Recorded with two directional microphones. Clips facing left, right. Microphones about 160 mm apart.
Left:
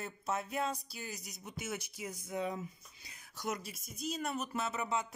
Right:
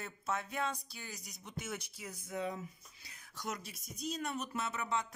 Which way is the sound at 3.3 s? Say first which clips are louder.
Left 3 dB; 5° left (ahead or behind).